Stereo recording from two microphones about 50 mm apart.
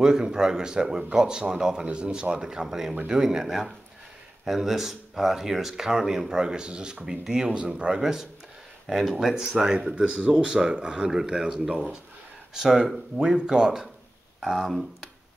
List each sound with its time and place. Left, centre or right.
0.0 s speech: centre